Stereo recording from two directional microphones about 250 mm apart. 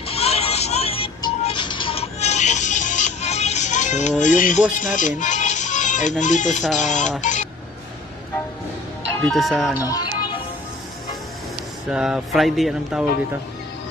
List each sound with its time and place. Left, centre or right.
0.0 s music: left
6.2 s speech: left
9.2 s speech: centre
9.8 s music: centre
11.9 s speech: centre